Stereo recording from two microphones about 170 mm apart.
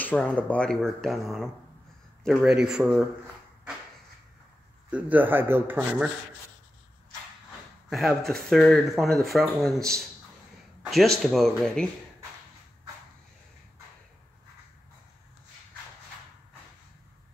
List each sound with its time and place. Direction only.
0.0 s speech: 10° left (ahead or behind)
4.9 s speech: 10° right (ahead or behind)
7.9 s speech: centre (ahead or behind)